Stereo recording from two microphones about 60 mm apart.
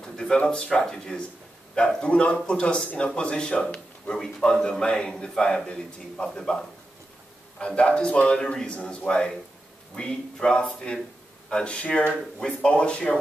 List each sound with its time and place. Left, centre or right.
0.0 s a man's voice: centre